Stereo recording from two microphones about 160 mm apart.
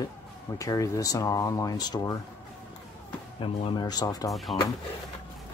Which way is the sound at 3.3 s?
35° left (ahead or behind).